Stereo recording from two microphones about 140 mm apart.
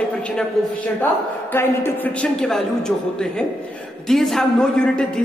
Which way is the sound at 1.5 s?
15° left (ahead or behind).